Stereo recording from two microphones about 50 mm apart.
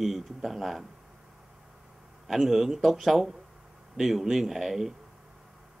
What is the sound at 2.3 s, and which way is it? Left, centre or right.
Speech, centre.